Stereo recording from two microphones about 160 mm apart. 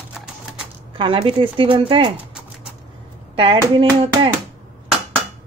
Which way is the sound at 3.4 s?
35° right (ahead or behind).